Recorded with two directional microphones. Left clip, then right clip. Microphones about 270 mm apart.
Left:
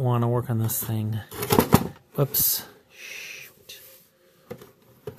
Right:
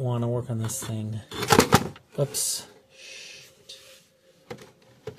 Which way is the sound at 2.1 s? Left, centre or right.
Left.